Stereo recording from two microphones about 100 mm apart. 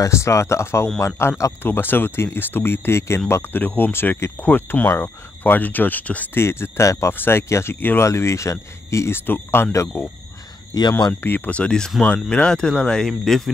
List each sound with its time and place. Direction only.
0.0 s speech: 30° left (ahead or behind)
10.7 s speech: 40° left (ahead or behind)
11.2 s speech: 20° left (ahead or behind)